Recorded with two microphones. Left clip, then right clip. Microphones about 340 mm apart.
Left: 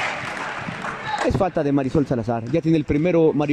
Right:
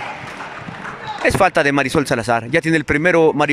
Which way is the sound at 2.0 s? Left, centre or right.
Right.